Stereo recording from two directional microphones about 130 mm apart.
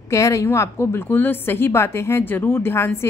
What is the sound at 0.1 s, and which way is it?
A woman's voice, 25° left (ahead or behind).